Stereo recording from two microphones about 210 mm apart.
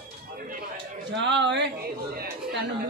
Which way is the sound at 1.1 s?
60° right (ahead or behind).